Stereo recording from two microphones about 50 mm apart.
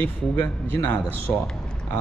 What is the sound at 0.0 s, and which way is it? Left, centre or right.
Speech, left.